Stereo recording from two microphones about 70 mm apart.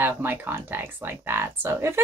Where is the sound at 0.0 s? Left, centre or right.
Right.